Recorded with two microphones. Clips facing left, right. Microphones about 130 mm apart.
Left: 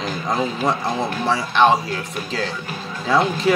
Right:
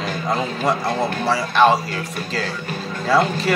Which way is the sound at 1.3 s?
5° right (ahead or behind).